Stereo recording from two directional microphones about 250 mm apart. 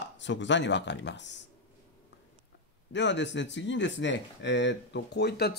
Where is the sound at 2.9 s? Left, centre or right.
Left.